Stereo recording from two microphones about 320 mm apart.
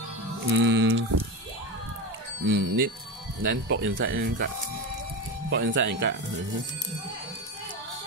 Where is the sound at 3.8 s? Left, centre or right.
Right.